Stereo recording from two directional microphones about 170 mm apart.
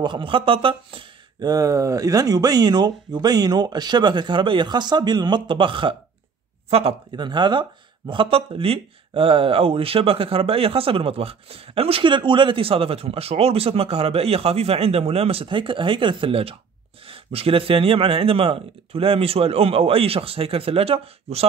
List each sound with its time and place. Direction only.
0.0 s speech: 30° right (ahead or behind)